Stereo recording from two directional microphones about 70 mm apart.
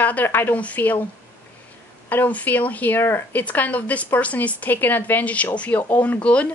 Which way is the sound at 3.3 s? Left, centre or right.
Left.